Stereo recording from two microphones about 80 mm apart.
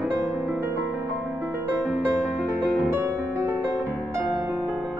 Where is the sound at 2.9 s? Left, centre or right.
Right.